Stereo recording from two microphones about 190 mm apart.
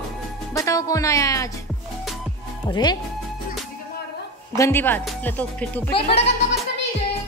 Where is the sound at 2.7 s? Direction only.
20° left (ahead or behind).